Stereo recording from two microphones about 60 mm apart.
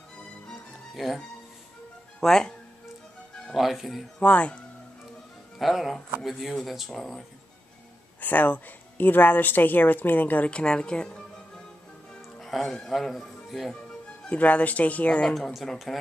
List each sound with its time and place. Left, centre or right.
0.5 s music: centre
2.1 s speech: centre
3.5 s speech: centre
4.2 s speech: left
5.6 s speech: centre
8.2 s speech: left
10.5 s speech: centre
12.4 s music: centre
12.7 s speech: centre
14.3 s speech: left
15.3 s speech: centre